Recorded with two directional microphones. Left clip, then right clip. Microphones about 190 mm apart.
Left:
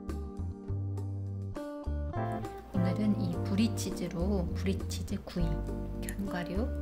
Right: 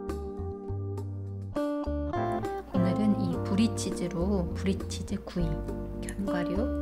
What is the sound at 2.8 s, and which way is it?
Music, 10° right (ahead or behind).